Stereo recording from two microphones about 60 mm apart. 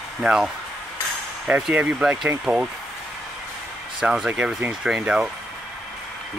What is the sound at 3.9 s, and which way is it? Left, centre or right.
Speech, centre.